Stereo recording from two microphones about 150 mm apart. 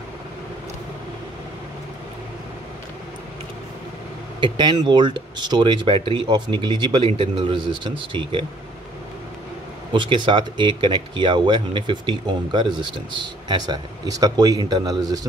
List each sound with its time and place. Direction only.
4.4 s speech: 30° right (ahead or behind)
9.9 s speech: 35° right (ahead or behind)